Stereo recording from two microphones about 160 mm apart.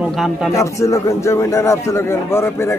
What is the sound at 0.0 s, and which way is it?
Speech, 5° right (ahead or behind).